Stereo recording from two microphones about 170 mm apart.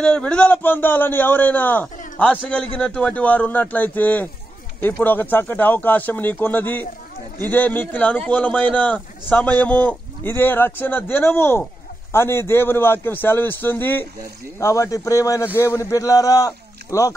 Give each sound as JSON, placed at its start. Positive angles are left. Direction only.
{"t": 0.0, "sound": "a man's voice", "side_deg": 5}